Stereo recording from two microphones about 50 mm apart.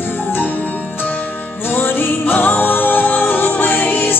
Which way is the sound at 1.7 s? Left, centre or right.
Left.